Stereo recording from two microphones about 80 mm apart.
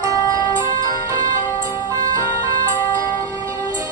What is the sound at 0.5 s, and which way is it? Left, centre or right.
Music, right.